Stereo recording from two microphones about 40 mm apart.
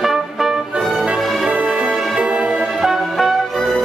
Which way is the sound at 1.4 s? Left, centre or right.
Right.